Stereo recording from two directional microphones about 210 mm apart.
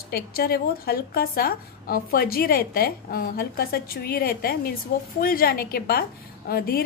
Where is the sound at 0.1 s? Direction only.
50° left (ahead or behind).